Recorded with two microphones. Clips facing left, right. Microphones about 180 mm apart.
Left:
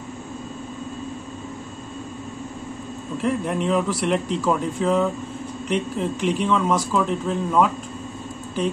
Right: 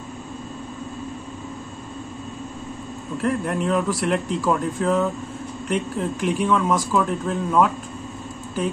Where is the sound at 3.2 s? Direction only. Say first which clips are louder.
Even; centre (ahead or behind).